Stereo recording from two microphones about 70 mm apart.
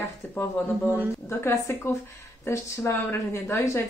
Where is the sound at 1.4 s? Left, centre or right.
Left.